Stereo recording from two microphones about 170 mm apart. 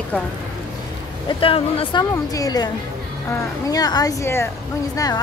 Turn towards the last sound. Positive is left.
turn(degrees=20)  # may be behind; listen again after turning